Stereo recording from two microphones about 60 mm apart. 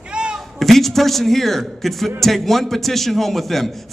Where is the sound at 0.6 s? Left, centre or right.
Centre.